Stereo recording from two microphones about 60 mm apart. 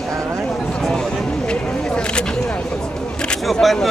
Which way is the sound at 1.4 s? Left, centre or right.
Centre.